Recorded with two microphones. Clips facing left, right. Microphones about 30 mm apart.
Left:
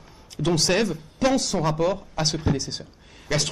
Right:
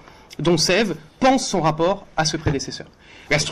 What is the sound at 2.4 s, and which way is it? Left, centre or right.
Speech, right.